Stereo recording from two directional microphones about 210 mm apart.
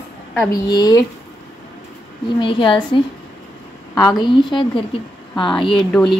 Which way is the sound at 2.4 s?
25° left (ahead or behind).